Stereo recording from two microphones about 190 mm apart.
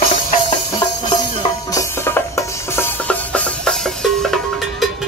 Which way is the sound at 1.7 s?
15° left (ahead or behind).